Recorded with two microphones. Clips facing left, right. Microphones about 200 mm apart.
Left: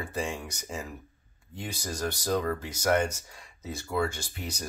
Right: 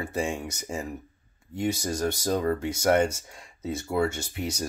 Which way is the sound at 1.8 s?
25° right (ahead or behind).